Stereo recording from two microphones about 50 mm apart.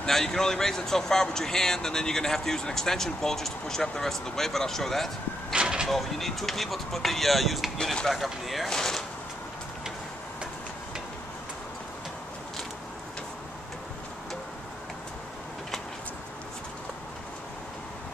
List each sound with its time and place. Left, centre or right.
0.0 s speech: centre
5.5 s vehicle: centre
5.9 s speech: centre
7.7 s speech: centre
8.1 s speech: centre